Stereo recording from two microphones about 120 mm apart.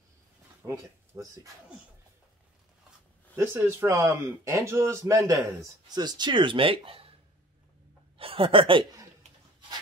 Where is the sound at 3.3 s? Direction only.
20° right (ahead or behind); by 7.1 s 50° right (ahead or behind).